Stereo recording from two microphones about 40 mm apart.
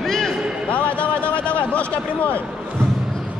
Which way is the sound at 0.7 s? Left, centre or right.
Left.